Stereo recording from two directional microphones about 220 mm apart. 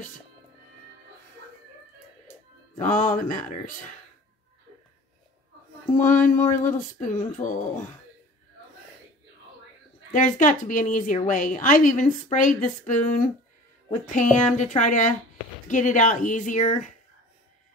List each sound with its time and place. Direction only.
2.8 s a woman's voice: 35° left (ahead or behind)
5.9 s a woman's voice: 35° left (ahead or behind)
10.1 s a woman's voice: 35° left (ahead or behind)